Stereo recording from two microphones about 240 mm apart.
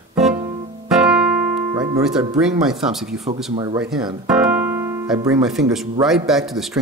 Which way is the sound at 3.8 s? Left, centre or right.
Centre.